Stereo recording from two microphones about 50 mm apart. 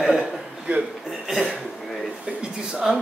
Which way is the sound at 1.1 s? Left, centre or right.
Centre.